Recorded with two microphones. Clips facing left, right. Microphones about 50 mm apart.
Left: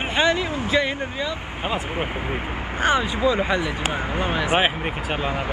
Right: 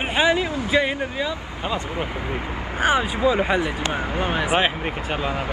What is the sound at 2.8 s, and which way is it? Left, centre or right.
Speech, centre.